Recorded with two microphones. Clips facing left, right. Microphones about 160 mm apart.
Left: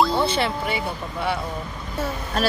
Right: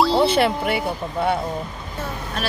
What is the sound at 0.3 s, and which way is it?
Speech, 55° right (ahead or behind).